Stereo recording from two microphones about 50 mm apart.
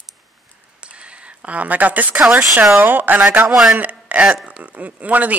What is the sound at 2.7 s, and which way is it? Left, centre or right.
Speech, right.